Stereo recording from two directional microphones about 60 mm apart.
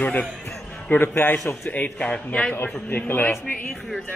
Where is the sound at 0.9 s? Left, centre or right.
Left.